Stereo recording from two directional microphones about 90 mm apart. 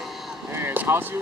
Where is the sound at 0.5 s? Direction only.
25° right (ahead or behind).